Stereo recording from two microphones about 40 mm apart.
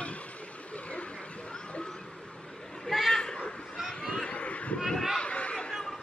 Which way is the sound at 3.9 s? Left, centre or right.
Left.